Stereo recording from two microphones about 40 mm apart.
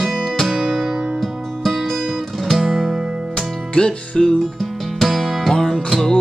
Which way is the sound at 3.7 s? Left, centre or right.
Left.